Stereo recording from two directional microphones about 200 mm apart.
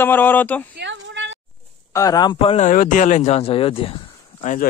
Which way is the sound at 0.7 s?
60° right (ahead or behind).